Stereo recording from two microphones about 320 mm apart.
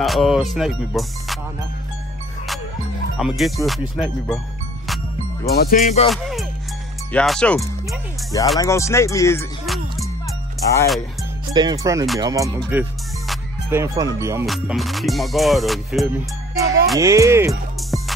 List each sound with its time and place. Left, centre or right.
0.0 s speech: centre
3.2 s music: centre
5.5 s speech: left
6.0 s music: centre
8.5 s speech: centre
10.7 s music: centre
11.5 s speech: centre
13.3 s music: centre